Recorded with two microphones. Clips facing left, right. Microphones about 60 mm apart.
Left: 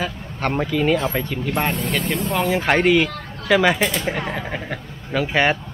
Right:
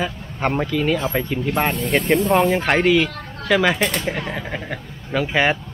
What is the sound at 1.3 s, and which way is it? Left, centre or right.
Speech, centre.